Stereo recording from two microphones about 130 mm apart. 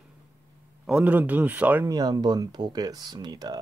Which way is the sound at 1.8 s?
30° right (ahead or behind).